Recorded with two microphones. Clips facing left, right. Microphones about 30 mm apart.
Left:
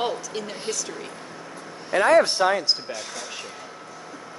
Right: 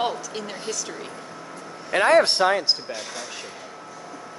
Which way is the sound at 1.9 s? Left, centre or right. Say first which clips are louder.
Even; right.